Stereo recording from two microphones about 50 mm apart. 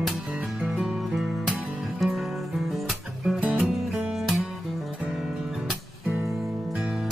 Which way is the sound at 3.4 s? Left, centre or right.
Right.